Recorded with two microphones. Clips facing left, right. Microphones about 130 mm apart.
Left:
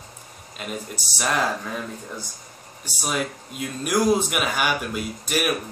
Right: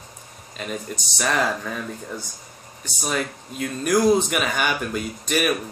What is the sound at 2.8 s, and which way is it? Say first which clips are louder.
Speech: right 1 dB; 10° left (ahead or behind).